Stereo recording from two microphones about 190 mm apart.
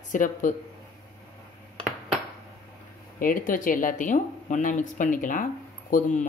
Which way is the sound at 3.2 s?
45° left (ahead or behind).